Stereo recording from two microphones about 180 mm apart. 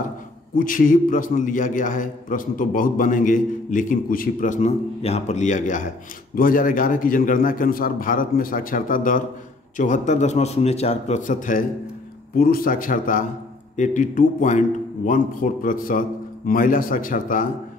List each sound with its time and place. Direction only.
0.6 s a man's voice: 50° left (ahead or behind)